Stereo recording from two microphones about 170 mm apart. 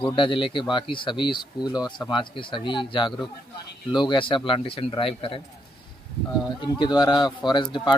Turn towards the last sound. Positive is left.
turn(degrees=25)  # may be behind; listen again after turning